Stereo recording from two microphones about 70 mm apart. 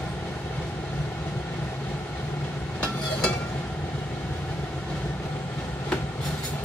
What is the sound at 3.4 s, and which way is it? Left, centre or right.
Train, centre.